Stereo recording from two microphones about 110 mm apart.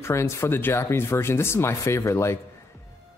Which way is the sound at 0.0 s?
25° left (ahead or behind).